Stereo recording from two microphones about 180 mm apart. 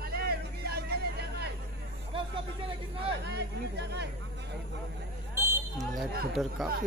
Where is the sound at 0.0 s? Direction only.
60° right (ahead or behind).